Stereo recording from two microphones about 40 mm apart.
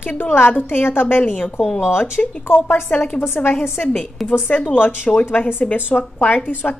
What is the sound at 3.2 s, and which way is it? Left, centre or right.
Speech, left.